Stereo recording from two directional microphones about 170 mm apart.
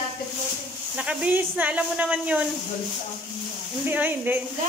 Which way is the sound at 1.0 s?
5° right (ahead or behind).